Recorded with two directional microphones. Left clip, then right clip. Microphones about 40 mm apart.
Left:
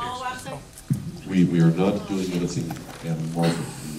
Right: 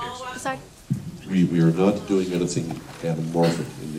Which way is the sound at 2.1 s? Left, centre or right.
Right.